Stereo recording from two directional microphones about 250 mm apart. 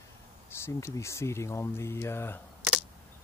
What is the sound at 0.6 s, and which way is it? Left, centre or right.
Speech, centre.